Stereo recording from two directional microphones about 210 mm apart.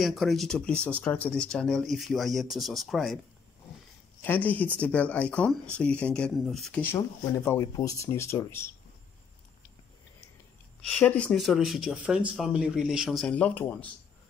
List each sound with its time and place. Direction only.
0.0 s speech: centre (ahead or behind)
4.2 s speech: 10° left (ahead or behind)
10.9 s speech: 5° left (ahead or behind)